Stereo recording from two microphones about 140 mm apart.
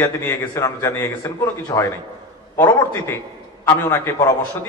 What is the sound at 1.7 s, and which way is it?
Speech, 35° left (ahead or behind).